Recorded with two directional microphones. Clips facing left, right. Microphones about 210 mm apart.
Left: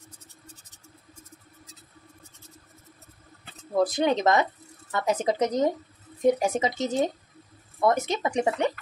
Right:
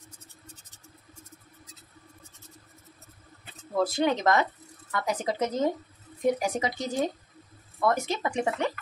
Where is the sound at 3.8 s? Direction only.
20° left (ahead or behind).